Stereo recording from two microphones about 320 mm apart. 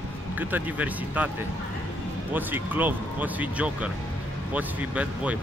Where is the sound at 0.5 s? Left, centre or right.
Centre.